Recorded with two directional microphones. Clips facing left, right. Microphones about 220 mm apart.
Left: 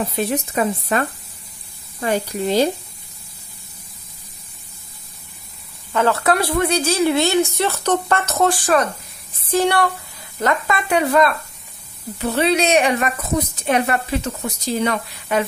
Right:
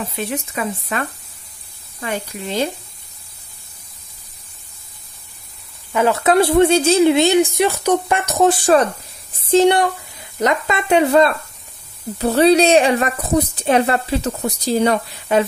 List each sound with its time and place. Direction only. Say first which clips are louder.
0.1 s speech: left 3 dB; 40° left (ahead or behind)
5.9 s a woman's voice: right 3 dB; 15° right (ahead or behind)
12.2 s a woman's voice: right 6 dB; 35° right (ahead or behind)